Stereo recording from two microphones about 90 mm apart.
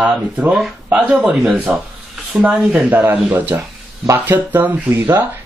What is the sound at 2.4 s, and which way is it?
Speech, 15° right (ahead or behind).